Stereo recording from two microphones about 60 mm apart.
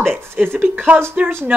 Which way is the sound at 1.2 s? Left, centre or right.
Centre.